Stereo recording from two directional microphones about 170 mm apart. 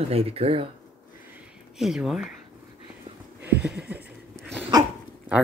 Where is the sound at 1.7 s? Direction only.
Centre (ahead or behind).